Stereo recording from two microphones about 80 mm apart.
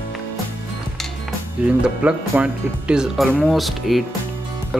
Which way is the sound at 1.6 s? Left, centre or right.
Centre.